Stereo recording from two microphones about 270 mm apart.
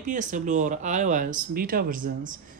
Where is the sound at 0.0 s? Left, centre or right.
Right.